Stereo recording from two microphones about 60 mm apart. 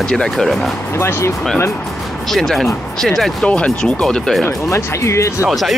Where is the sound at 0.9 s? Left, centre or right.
Left.